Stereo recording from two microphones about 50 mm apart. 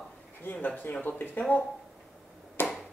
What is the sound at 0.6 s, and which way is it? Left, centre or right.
Speech, left.